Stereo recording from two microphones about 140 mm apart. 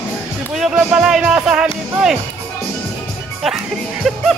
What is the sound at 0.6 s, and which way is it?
Speech, 5° right (ahead or behind).